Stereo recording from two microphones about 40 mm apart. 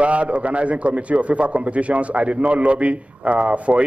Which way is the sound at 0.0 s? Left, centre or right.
Right.